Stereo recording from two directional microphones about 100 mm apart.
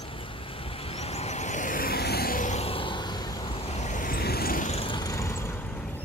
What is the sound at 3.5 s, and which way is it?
Vehicle, 90° left.